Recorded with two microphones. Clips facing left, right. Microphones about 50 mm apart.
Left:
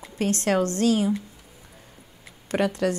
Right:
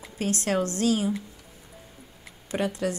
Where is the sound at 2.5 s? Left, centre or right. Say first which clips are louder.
Left 4 dB; left.